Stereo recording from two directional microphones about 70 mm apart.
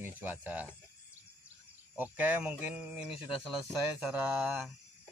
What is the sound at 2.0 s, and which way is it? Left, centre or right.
Speech, right.